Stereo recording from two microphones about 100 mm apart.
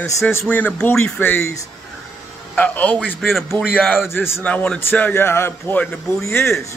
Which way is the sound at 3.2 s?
Centre (ahead or behind).